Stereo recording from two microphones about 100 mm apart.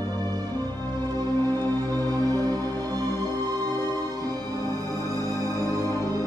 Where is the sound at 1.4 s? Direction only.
40° right (ahead or behind).